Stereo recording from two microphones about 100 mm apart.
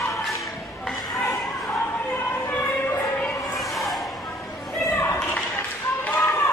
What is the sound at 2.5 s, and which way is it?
Music, 20° left (ahead or behind).